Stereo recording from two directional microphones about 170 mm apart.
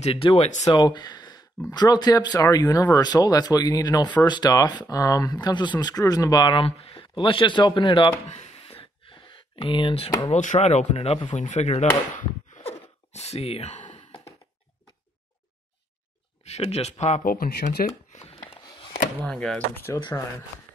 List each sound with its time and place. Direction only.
0.0 s speech: 30° left (ahead or behind)
0.5 s speech: 45° left (ahead or behind)
0.7 s speech: 25° left (ahead or behind)
8.4 s gasp: 40° left (ahead or behind)
9.6 s speech: 30° left (ahead or behind)
10.3 s speech: 45° left (ahead or behind)
12.5 s a sound: 40° left (ahead or behind)
16.4 s speech: 40° left (ahead or behind)
17.0 s speech: 50° left (ahead or behind)
18.1 s a sound: 35° left (ahead or behind)
19.2 s speech: 5° left (ahead or behind)